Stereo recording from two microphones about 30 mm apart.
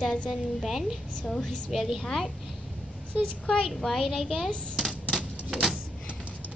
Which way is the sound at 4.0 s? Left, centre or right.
Centre.